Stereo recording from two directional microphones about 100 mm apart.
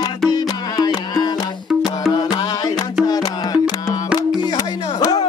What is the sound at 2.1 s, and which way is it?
Music, 45° left (ahead or behind).